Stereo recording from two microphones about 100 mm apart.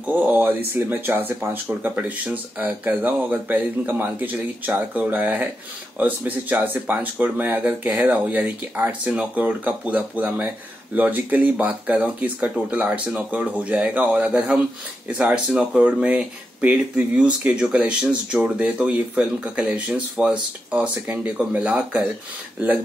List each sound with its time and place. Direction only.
0.0 s speech: 15° right (ahead or behind)